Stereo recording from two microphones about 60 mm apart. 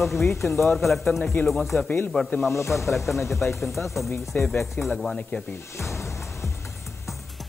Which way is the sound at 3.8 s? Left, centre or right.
Left.